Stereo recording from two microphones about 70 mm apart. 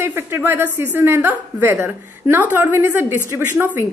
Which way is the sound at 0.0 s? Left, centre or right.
Right.